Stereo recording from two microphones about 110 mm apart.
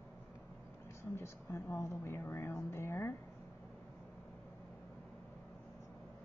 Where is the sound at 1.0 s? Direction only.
25° left (ahead or behind).